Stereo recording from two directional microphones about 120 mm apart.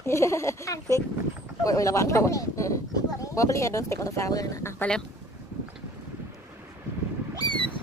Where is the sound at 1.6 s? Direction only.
25° left (ahead or behind).